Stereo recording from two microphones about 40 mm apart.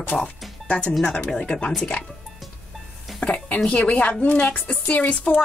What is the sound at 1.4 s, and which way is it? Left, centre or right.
Speech, left.